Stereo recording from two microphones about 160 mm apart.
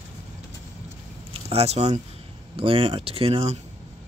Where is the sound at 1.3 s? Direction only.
40° right (ahead or behind).